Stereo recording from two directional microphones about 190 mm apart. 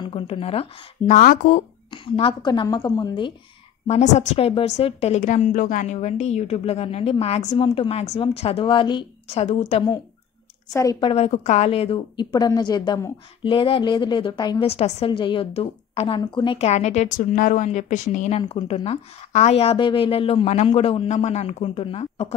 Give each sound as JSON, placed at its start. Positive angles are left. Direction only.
{"t": 0.0, "sound": "a woman's voice", "side_deg": 30}
{"t": 1.9, "sound": "a woman's voice", "side_deg": 25}
{"t": 3.8, "sound": "a woman's voice", "side_deg": 40}
{"t": 10.7, "sound": "a woman's voice", "side_deg": 20}